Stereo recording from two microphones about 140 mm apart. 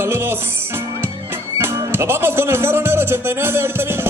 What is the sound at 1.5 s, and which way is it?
Speech, 15° right (ahead or behind).